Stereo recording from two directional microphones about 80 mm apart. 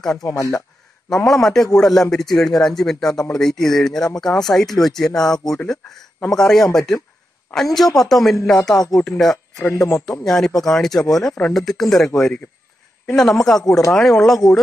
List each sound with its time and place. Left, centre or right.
0.2 s speech: left
1.1 s speech: centre
9.6 s a man's voice: left
10.2 s speech: centre